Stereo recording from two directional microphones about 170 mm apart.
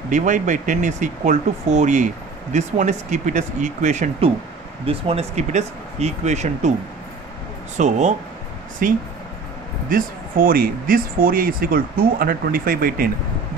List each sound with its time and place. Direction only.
0.1 s speech: 45° right (ahead or behind)
7.7 s speech: 45° right (ahead or behind)
8.8 s speech: 55° right (ahead or behind)